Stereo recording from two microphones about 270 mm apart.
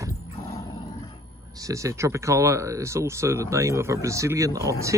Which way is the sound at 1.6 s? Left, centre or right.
Centre.